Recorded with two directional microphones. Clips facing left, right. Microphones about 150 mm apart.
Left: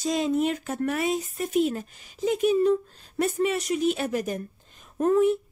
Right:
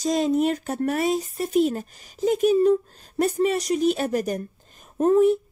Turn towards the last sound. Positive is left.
turn(degrees=-35)  # may be behind; listen again after turning